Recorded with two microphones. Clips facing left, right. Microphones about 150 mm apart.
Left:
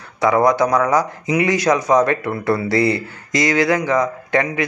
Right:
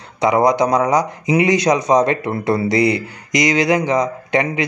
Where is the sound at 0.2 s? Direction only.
20° right (ahead or behind).